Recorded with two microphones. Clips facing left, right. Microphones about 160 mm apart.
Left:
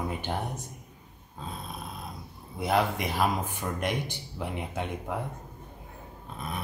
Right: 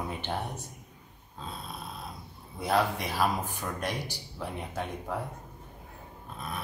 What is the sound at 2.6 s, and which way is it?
A man's voice, 20° left (ahead or behind).